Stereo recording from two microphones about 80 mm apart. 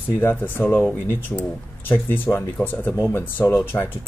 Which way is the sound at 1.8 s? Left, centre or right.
Left.